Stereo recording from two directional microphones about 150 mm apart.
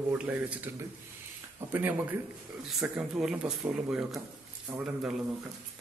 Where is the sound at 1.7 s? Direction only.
10° right (ahead or behind).